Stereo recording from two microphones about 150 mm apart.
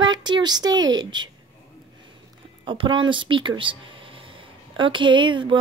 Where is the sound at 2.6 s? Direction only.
35° right (ahead or behind).